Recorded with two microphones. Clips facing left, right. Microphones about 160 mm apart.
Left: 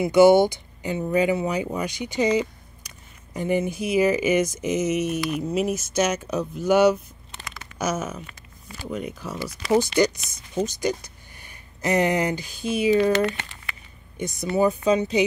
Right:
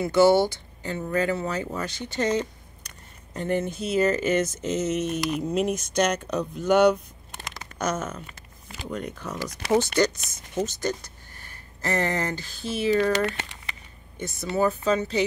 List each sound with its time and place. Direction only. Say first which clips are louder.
0.0 s speech: left 4 dB; 15° left (ahead or behind)
14.1 s speech: left 3 dB; 15° left (ahead or behind)